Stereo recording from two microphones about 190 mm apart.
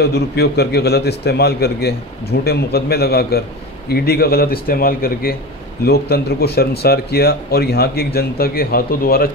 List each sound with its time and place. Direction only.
0.0 s speech: 60° left (ahead or behind)